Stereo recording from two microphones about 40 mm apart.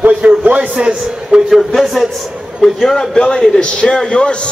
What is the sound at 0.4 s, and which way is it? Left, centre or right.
Speech, right.